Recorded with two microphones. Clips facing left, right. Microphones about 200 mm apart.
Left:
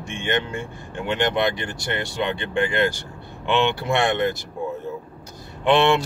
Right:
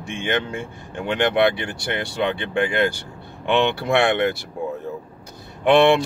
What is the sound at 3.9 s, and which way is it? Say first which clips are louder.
Speech: right 3 dB; 65° right (ahead or behind).